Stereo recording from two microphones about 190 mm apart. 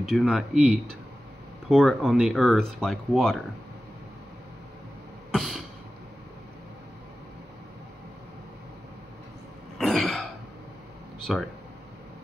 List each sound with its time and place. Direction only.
0.1 s speech: centre (ahead or behind)
5.3 s a sound: centre (ahead or behind)
9.8 s throat clearing: centre (ahead or behind)
11.3 s speech: centre (ahead or behind)